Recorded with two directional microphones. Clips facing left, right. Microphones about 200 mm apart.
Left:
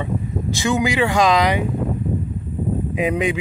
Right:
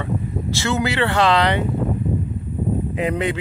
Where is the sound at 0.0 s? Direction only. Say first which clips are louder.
Left 1 dB; 15° left (ahead or behind).